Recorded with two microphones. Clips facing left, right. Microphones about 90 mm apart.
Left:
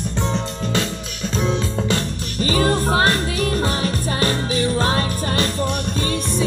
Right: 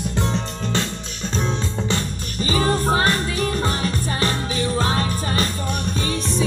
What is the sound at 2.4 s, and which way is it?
Music, 50° left (ahead or behind).